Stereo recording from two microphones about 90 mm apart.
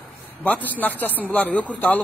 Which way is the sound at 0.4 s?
20° left (ahead or behind).